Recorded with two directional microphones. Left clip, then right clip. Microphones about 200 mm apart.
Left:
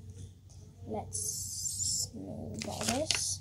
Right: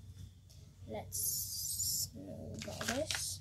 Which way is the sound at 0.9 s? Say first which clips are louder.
Left 4 dB; 10° left (ahead or behind).